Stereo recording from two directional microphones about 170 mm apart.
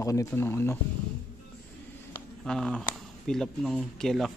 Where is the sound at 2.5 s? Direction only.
5° left (ahead or behind).